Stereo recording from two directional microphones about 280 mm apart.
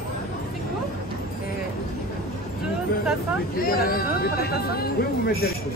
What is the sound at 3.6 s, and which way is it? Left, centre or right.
Speech, left.